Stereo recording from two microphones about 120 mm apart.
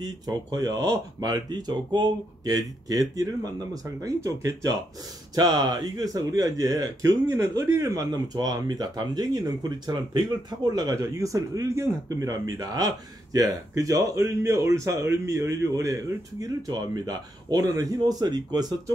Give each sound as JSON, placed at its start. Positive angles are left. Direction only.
{"t": 0.0, "sound": "a man's voice", "side_deg": -35}